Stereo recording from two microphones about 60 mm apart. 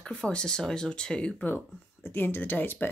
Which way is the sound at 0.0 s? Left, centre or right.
Centre.